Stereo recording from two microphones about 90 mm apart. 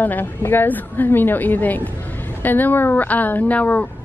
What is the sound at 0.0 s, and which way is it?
A woman's voice, 20° left (ahead or behind).